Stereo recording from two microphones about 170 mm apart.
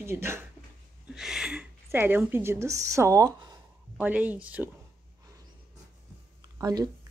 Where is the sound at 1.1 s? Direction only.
5° right (ahead or behind); by 3.5 s 20° right (ahead or behind).